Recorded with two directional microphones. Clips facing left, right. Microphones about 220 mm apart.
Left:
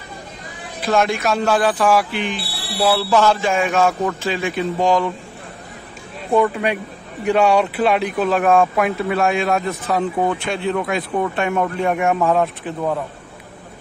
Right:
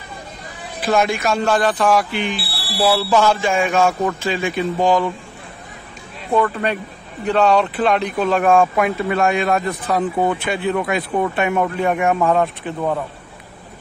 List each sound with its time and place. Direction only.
0.8 s speech: centre (ahead or behind)
6.3 s speech: 10° left (ahead or behind)